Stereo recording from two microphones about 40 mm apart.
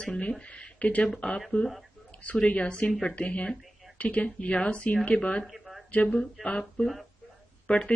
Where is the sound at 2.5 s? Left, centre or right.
Left.